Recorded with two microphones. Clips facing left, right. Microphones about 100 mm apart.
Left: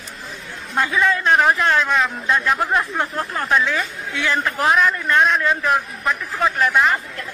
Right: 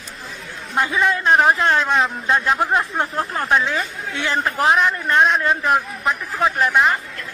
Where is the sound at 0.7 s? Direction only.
25° right (ahead or behind).